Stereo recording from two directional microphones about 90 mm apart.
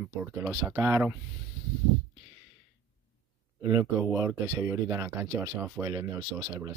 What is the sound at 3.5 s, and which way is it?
Speech, 40° right (ahead or behind).